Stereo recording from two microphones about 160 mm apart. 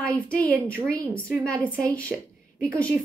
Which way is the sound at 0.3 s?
10° left (ahead or behind).